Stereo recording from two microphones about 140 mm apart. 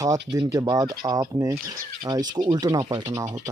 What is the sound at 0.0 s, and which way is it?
Speech, 25° right (ahead or behind).